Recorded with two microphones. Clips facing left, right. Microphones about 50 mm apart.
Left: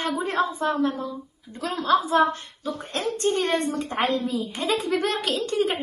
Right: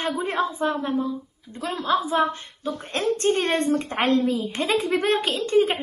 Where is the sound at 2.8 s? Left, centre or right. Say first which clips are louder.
Right 2 dB; right.